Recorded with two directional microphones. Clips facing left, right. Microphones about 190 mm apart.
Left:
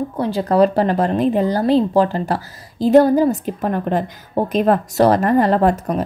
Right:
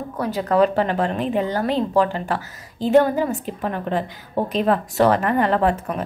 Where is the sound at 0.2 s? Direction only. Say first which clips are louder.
Left 3 dB; 30° left (ahead or behind).